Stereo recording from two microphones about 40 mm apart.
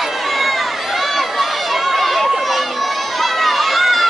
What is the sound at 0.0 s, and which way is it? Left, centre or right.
Run, centre.